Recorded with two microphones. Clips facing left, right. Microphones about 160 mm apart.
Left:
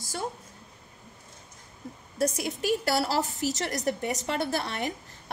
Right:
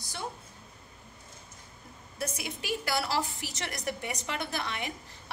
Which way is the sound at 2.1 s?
40° left (ahead or behind).